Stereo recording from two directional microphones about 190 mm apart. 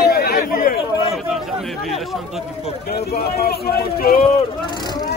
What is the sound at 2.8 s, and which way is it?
A man's voice, 55° left (ahead or behind).